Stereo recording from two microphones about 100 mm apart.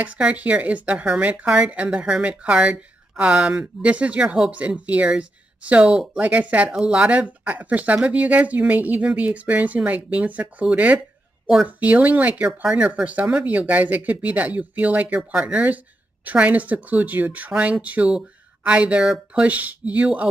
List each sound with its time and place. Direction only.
0.0 s speech: 15° right (ahead or behind)